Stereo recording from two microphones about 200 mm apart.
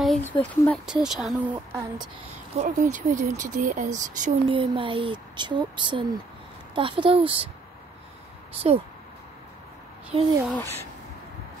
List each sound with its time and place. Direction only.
0.0 s speech: 5° left (ahead or behind)
1.7 s speech: 15° right (ahead or behind)
2.6 s speech: 35° right (ahead or behind)
4.5 s speech: 25° right (ahead or behind)
8.5 s speech: 30° right (ahead or behind)
10.4 s speech: 5° left (ahead or behind)